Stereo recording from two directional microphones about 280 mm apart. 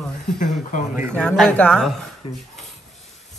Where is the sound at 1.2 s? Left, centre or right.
Centre.